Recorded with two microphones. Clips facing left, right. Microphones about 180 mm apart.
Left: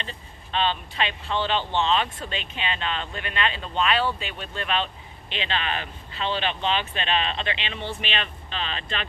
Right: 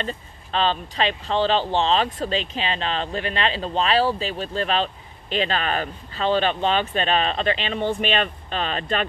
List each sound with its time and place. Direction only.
0.0 s speech: 40° right (ahead or behind)